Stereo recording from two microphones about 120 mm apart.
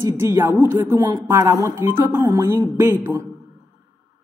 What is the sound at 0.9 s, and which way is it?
A woman's voice, 30° right (ahead or behind).